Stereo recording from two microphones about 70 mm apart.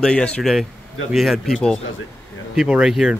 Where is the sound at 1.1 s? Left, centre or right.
Centre.